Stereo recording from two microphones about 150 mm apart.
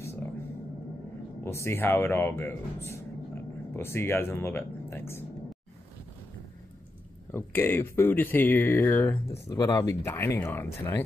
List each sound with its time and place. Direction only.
1.4 s speech: 15° left (ahead or behind)
7.3 s speech: 15° left (ahead or behind)